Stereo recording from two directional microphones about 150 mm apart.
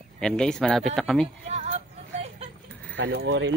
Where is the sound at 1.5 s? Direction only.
45° right (ahead or behind).